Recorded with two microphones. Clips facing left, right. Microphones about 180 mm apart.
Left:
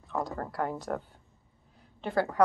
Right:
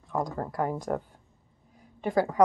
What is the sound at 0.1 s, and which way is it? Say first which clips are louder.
A woman's voice: right 3 dB; 10° right (ahead or behind).